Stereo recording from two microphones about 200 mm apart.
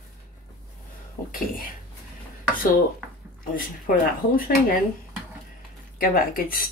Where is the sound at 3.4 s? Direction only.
45° left (ahead or behind).